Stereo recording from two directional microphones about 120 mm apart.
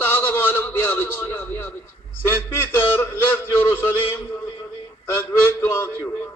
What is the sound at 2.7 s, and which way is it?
A man's voice, 20° left (ahead or behind).